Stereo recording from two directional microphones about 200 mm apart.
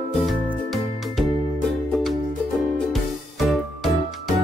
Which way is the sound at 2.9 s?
Centre (ahead or behind).